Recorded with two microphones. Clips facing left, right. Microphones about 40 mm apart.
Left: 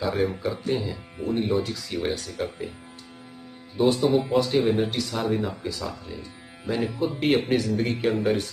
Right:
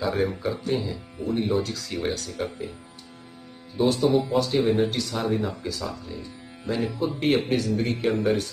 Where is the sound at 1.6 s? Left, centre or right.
Centre.